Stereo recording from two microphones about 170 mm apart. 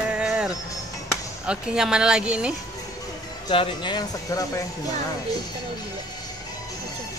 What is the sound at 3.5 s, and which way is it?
Speech, 30° left (ahead or behind).